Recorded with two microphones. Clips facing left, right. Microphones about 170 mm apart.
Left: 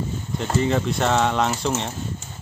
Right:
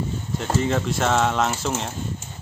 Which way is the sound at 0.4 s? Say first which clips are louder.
Left 1 dB; centre (ahead or behind).